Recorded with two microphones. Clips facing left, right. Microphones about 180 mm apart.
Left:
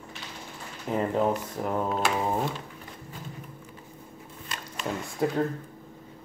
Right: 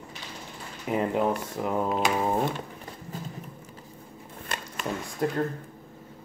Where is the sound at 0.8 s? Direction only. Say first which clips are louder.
Even; 10° right (ahead or behind).